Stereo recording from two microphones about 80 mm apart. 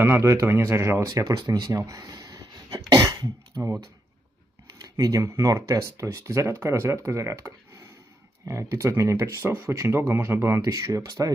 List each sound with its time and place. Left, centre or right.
0.0 s speech: right
1.0 s speech: right
2.9 s cough: right
3.6 s speech: right
4.8 s speech: right
10.7 s speech: right